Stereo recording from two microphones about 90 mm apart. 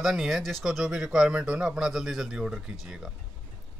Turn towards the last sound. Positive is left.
turn(degrees=-5)  # may be behind; listen again after turning